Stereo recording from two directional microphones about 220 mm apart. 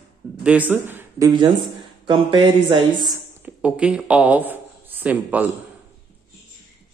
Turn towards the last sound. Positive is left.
turn(degrees=-5)  # may be behind; listen again after turning